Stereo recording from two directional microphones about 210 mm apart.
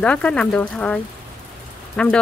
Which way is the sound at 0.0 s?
5° left (ahead or behind).